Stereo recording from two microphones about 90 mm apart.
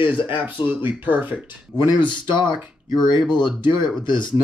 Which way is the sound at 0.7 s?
20° right (ahead or behind).